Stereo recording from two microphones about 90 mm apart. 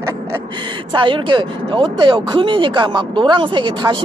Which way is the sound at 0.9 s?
65° right (ahead or behind).